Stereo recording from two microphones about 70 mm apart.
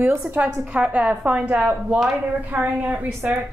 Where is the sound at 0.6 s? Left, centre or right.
Centre.